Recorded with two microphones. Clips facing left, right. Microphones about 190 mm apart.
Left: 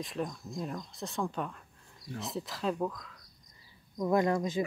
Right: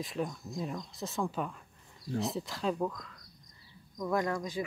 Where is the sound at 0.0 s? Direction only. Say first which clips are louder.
Even; centre (ahead or behind).